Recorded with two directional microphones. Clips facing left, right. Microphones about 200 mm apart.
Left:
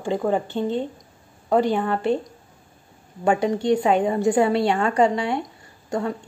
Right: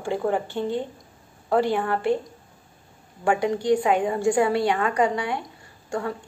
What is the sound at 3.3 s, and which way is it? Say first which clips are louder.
A woman's voice: left 1 dB; 25° left (ahead or behind).